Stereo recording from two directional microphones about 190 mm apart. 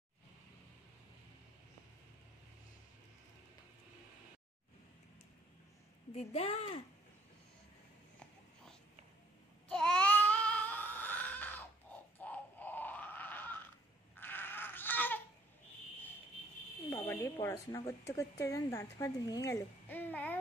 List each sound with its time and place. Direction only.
6.1 s speech: 35° left (ahead or behind)
9.7 s babbling: 5° left (ahead or behind)
12.2 s grunt: 10° left (ahead or behind)
14.1 s a sound: 10° left (ahead or behind)
16.9 s speech: 10° left (ahead or behind)